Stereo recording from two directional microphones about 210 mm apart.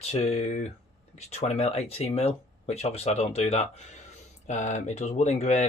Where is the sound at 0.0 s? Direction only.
30° left (ahead or behind).